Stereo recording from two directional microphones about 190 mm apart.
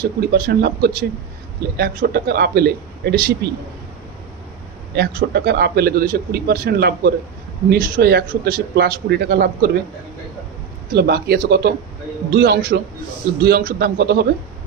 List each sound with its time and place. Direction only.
0.0 s a man's voice: 55° right (ahead or behind)
4.9 s a man's voice: 60° right (ahead or behind)
10.9 s a man's voice: 55° right (ahead or behind)